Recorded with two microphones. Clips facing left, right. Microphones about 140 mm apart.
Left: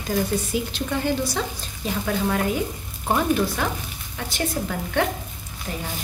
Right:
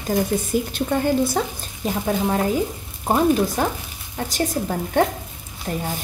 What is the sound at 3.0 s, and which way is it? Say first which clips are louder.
A woman's voice: right 3 dB; 30° right (ahead or behind).